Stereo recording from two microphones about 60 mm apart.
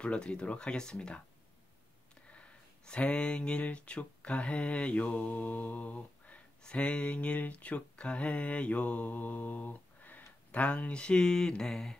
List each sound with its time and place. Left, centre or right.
0.0 s speech: centre
2.3 s speech: centre